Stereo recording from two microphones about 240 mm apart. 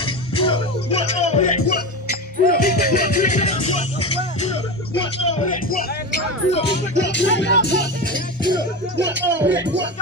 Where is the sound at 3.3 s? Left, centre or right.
Left.